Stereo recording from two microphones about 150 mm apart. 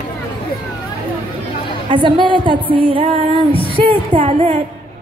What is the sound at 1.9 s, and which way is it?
A woman's voice, 30° right (ahead or behind).